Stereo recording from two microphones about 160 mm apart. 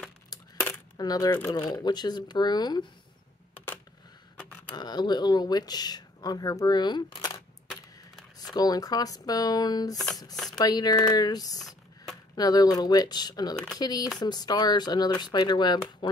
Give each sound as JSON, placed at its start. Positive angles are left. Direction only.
{"t": 0.9, "sound": "speech", "side_deg": 25}
{"t": 4.7, "sound": "speech", "side_deg": 25}
{"t": 10.3, "sound": "a sound", "side_deg": 0}
{"t": 10.6, "sound": "speech", "side_deg": 25}